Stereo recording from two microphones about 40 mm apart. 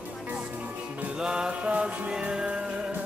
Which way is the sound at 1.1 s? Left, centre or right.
Right.